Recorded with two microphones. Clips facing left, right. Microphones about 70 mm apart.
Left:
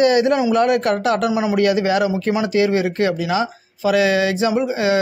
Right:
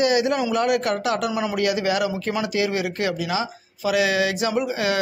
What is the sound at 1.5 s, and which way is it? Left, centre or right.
Speech, left.